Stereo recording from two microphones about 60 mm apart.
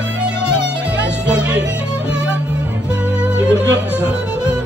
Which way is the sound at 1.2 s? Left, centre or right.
Centre.